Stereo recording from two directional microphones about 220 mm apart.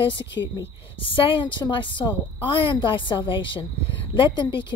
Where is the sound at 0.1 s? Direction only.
55° left (ahead or behind).